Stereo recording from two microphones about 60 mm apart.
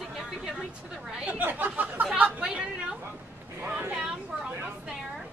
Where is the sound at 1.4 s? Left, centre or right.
Right.